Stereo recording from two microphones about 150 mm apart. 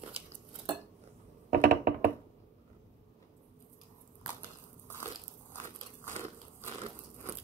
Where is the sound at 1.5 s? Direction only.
75° right (ahead or behind).